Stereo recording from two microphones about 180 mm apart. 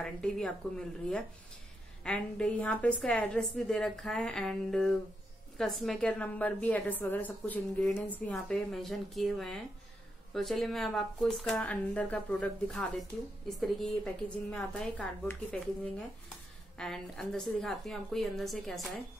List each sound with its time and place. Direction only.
0.0 s a woman's voice: 5° left (ahead or behind)